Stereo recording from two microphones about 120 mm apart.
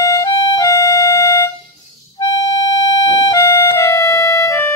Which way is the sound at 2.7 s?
35° left (ahead or behind).